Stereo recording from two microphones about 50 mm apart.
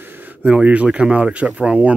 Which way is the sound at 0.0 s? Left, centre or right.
Right.